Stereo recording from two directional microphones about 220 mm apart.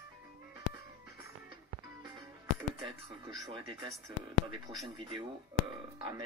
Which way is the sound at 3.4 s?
20° right (ahead or behind).